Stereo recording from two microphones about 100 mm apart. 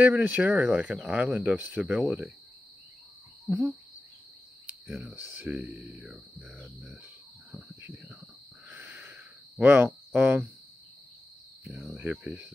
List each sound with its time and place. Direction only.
0.0 s cricket: 15° right (ahead or behind)
4.8 s speech: 5° right (ahead or behind)
5.1 s cricket: 15° right (ahead or behind)
6.4 s speech: 5° left (ahead or behind)
8.6 s a sound: 20° right (ahead or behind)
11.6 s speech: centre (ahead or behind)
11.9 s cricket: 15° right (ahead or behind)